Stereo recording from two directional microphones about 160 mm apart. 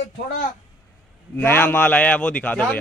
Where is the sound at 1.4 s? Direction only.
15° left (ahead or behind).